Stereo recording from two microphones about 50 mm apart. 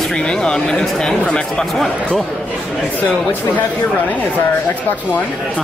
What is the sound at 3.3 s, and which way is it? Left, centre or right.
Speech, left.